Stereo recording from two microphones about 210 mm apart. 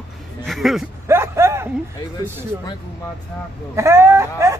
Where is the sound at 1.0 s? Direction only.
10° right (ahead or behind).